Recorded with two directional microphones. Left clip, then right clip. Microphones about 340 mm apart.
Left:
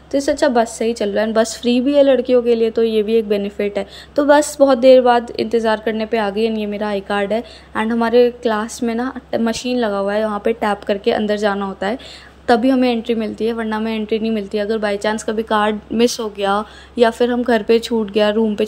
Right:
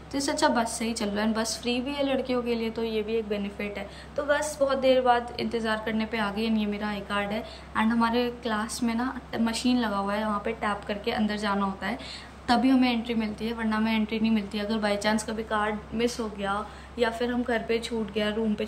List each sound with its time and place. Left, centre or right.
0.1 s a woman's voice: centre